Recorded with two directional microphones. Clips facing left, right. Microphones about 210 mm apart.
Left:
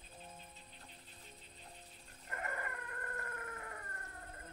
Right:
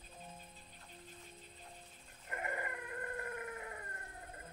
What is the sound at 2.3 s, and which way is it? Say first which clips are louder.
Howl: right 2 dB; 20° right (ahead or behind).